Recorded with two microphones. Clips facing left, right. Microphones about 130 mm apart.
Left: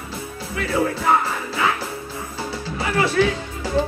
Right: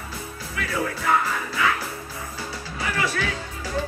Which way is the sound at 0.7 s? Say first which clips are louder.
Left 5 dB; 30° left (ahead or behind).